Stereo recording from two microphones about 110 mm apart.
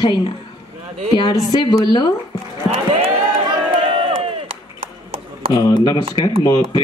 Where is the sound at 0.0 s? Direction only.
45° left (ahead or behind).